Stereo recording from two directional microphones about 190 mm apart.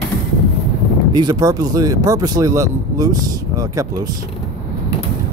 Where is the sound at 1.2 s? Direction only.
20° right (ahead or behind).